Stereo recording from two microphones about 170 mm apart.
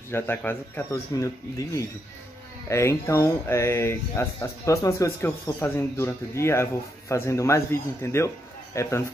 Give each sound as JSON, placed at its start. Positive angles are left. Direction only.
{"t": 0.1, "sound": "speech", "side_deg": 15}